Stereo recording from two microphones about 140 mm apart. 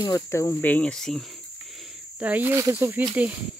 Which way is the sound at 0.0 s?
25° left (ahead or behind).